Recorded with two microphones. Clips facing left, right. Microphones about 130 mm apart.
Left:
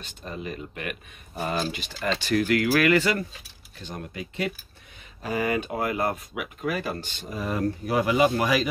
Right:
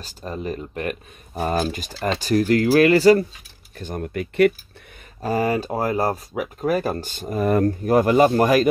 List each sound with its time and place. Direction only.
0.0 s speech: 40° right (ahead or behind)
3.7 s speech: 50° right (ahead or behind)
5.2 s speech: 40° right (ahead or behind)